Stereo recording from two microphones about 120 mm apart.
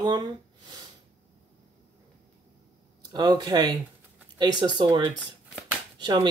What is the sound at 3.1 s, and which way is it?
Speech, 35° right (ahead or behind).